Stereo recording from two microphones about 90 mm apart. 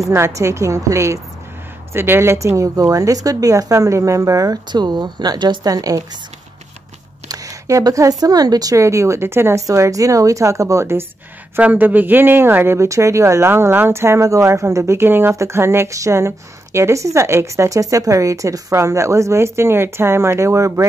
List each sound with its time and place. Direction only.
0.1 s speech: 30° right (ahead or behind)
7.2 s speech: 35° right (ahead or behind)
9.7 s speech: 40° right (ahead or behind)
11.6 s speech: 20° right (ahead or behind); by 20.8 s 35° right (ahead or behind)